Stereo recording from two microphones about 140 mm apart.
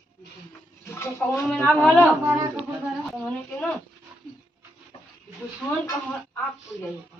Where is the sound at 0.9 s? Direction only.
20° left (ahead or behind).